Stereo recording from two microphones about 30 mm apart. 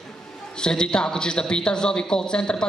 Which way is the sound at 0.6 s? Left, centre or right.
Left.